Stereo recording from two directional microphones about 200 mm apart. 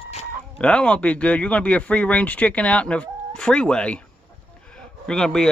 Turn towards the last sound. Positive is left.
turn(degrees=5)  # may be behind; listen again after turning